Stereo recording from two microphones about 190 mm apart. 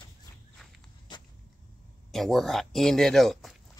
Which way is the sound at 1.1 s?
20° left (ahead or behind).